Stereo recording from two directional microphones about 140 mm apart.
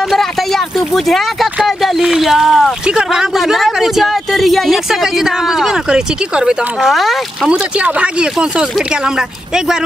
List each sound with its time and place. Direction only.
0.1 s speech: centre (ahead or behind)